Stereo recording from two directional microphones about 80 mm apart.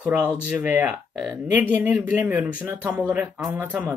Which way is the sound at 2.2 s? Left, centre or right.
Centre.